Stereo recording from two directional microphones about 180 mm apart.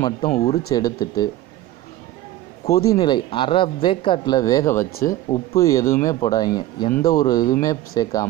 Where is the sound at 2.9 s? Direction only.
25° left (ahead or behind).